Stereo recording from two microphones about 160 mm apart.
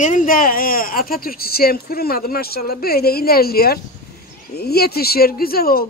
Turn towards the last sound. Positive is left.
turn(degrees=70)  # may be behind; listen again after turning